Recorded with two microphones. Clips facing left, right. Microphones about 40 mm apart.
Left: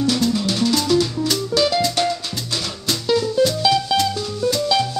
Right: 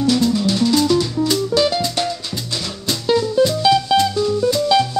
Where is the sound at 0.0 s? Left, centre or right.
Centre.